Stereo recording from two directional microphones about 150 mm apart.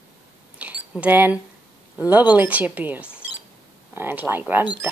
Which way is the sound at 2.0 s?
10° right (ahead or behind).